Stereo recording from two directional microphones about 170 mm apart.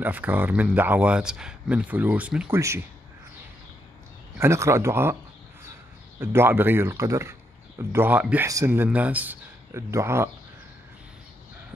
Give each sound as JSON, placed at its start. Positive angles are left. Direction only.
{"t": 0.0, "sound": "speech", "side_deg": -10}
{"t": 4.4, "sound": "speech", "side_deg": -15}
{"t": 6.1, "sound": "speech", "side_deg": -15}